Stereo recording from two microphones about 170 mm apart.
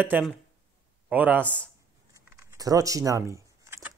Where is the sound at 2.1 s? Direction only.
15° right (ahead or behind).